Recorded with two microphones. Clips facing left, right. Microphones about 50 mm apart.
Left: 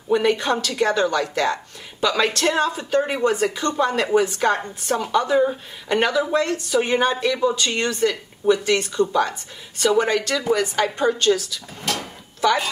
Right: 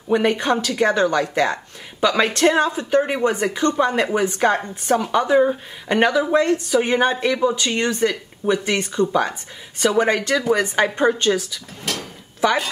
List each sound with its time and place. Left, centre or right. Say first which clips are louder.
0.1 s a woman's voice: right 1 dB; right
7.3 s a woman's voice: right 1 dB; centre